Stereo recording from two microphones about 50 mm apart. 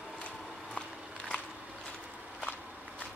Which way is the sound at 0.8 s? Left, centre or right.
Centre.